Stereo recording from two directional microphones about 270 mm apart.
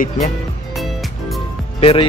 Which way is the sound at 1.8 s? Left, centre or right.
Left.